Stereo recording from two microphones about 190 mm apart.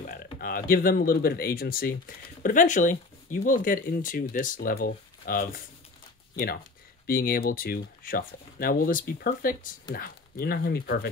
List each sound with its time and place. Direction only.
0.0 s speech: 45° left (ahead or behind)
7.1 s speech: 50° left (ahead or behind)